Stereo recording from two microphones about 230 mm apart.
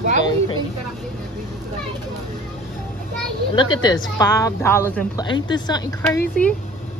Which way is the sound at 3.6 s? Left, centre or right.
Centre.